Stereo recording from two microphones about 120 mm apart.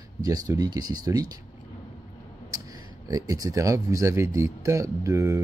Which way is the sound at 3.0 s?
30° right (ahead or behind).